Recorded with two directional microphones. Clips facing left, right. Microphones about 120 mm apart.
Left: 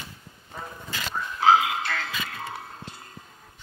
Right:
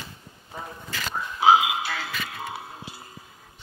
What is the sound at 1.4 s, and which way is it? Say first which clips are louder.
Frog: right 1 dB; 15° right (ahead or behind).